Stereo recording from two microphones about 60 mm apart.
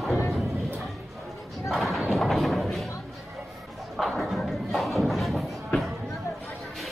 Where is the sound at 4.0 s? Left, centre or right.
Centre.